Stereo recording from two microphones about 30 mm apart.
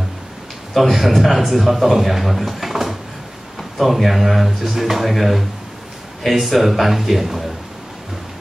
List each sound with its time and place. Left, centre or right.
0.7 s a man's voice: centre